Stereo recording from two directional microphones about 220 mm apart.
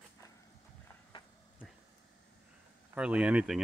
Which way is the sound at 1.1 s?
25° left (ahead or behind).